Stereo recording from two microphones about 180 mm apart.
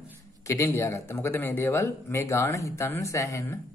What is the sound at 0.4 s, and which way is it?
Speech, 15° left (ahead or behind).